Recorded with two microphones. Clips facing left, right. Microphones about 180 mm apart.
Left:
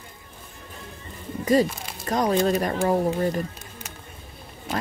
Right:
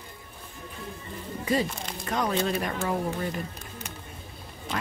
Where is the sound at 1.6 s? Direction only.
5° left (ahead or behind).